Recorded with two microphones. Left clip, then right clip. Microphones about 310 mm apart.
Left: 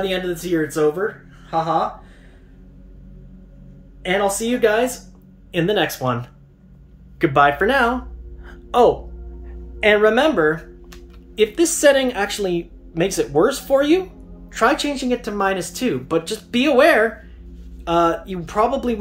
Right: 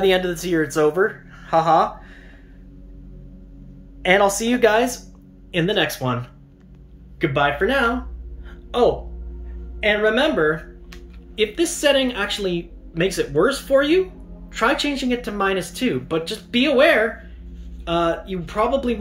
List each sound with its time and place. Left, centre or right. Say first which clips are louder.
0.0 s speech: right 4 dB; centre
4.0 s speech: right 3 dB; centre
8.5 s a sound: left 4 dB; centre
9.8 s speech: left 3 dB; centre